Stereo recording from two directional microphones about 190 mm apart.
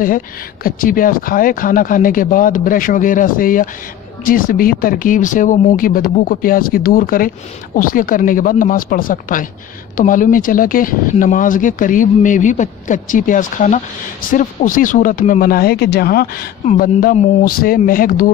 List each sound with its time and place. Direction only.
0.7 s speech: 50° left (ahead or behind)